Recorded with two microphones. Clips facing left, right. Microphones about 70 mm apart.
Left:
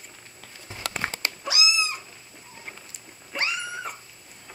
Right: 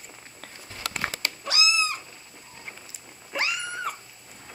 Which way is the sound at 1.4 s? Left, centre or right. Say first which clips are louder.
Even; centre.